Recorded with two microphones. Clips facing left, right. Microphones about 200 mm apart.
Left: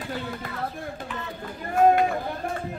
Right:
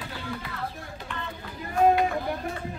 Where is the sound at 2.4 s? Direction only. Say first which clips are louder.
Left 3 dB; 50° left (ahead or behind).